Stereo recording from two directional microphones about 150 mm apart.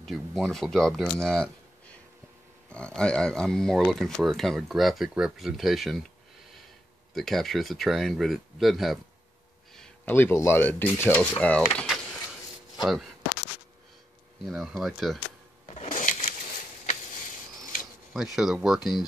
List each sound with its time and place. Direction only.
0.0 s speech: centre (ahead or behind)
2.7 s speech: 5° left (ahead or behind)
7.2 s speech: centre (ahead or behind)
9.8 s speech: 15° left (ahead or behind)
12.8 s a sound: centre (ahead or behind)
14.4 s speech: centre (ahead or behind)
15.9 s a sound: 60° left (ahead or behind)
18.1 s speech: centre (ahead or behind)